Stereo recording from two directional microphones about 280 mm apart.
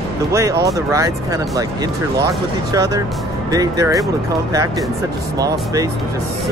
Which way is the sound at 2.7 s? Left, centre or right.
Centre.